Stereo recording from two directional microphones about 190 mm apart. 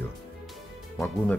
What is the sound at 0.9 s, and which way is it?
Speech, 5° left (ahead or behind).